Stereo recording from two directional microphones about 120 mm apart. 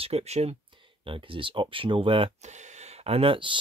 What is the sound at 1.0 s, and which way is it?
Speech, 45° right (ahead or behind).